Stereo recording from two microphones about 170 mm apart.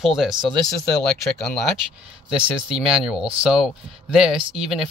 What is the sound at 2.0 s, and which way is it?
Speech, 5° right (ahead or behind).